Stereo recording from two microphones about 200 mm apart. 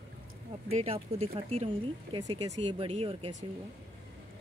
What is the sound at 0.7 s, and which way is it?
Speech, 30° right (ahead or behind).